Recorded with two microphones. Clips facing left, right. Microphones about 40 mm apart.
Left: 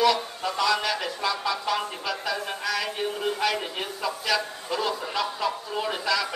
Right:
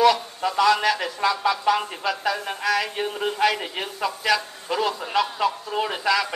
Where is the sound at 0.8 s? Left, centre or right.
Centre.